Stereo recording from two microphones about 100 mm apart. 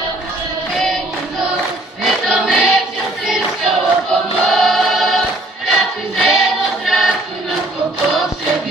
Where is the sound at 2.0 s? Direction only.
Centre (ahead or behind).